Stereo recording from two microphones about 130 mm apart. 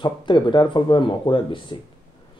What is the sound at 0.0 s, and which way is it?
Speech, 40° left (ahead or behind).